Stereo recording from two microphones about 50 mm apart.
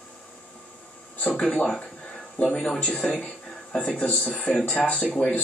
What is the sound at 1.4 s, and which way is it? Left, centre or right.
Speech, centre.